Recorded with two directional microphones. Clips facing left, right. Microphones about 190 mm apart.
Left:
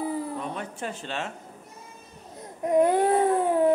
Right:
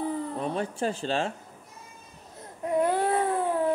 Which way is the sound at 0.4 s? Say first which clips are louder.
Right 4 dB; 35° right (ahead or behind).